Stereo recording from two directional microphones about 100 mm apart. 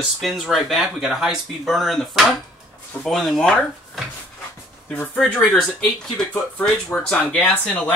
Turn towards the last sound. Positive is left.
turn(degrees=15)  # may be behind; listen again after turning